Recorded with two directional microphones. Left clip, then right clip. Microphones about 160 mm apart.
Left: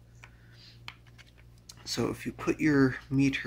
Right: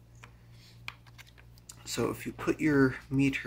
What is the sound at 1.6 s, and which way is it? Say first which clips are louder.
Speech: even; 20° left (ahead or behind).